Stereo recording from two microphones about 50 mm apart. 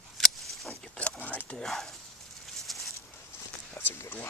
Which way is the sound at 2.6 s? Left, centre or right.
Centre.